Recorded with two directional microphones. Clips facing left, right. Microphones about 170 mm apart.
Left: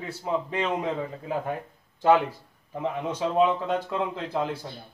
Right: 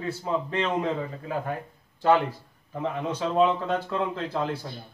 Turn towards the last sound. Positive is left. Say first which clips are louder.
# even
turn(degrees=15)  # may be behind; listen again after turning